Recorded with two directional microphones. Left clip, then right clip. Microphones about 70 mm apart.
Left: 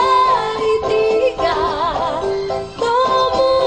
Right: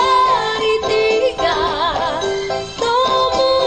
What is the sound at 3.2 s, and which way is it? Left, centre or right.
Music, right.